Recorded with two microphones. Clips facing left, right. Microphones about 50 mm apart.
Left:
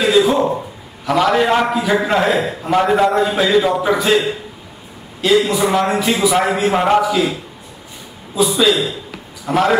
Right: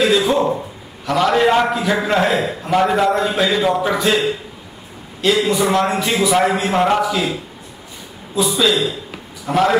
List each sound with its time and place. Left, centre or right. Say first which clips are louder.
0.0 s a sound: left 2 dB; centre
1.0 s a man's voice: left 1 dB; centre
5.2 s a man's voice: left 2 dB; centre
8.3 s a man's voice: left 2 dB; centre